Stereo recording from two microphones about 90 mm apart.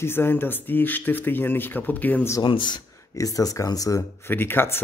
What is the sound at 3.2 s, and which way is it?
Speech, 40° left (ahead or behind).